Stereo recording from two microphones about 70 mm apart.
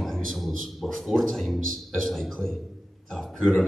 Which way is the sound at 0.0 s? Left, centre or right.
Centre.